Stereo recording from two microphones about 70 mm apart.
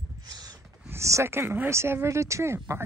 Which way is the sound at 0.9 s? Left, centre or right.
Right.